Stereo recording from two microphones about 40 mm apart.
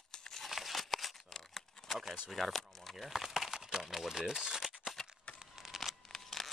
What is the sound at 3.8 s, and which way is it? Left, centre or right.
Speech, centre.